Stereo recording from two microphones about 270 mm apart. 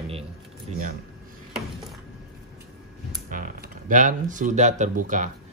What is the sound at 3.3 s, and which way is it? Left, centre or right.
Speech, right.